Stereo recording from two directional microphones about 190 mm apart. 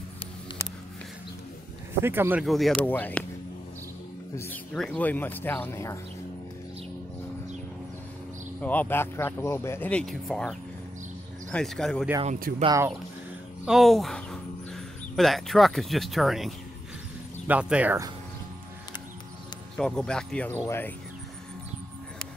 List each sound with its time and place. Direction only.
2.0 s speech: 10° right (ahead or behind)
2.4 s speech: centre (ahead or behind)
4.4 s speech: 10° left (ahead or behind)
8.5 s speech: 10° left (ahead or behind)
11.5 s speech: centre (ahead or behind)
12.4 s speech: 50° right (ahead or behind)
12.6 s speech: 15° right (ahead or behind)
13.7 s speech: centre (ahead or behind)
19.8 s speech: 5° left (ahead or behind)